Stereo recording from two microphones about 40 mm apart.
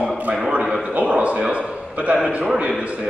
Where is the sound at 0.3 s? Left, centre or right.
Right.